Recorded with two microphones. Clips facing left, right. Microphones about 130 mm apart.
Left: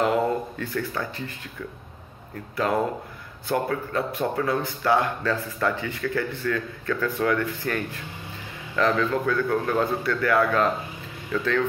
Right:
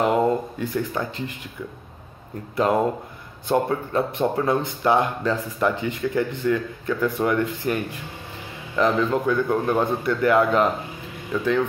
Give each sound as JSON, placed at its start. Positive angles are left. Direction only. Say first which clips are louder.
{"t": 0.0, "sound": "speech", "louder": "right 3 dB", "side_deg": -15}
{"t": 2.5, "sound": "speech", "louder": "right 4 dB", "side_deg": -20}